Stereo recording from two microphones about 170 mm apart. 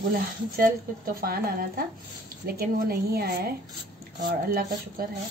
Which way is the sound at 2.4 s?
65° right (ahead or behind).